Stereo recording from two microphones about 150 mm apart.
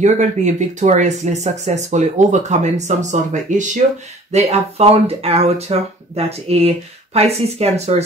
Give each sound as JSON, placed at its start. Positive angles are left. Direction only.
{"t": 0.0, "sound": "speech", "side_deg": -50}